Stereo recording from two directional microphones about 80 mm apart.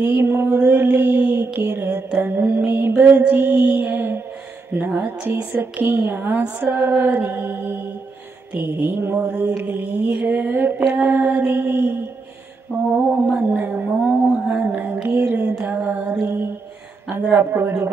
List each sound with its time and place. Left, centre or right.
0.0 s a woman's voice: right